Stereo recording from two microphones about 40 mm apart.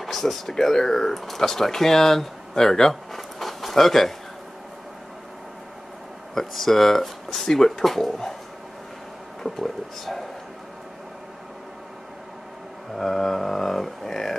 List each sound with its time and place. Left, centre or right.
0.0 s speech: centre
6.3 s speech: centre
9.4 s speech: centre
12.9 s a sound: centre